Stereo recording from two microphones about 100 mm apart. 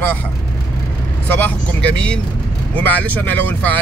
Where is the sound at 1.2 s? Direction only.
20° left (ahead or behind).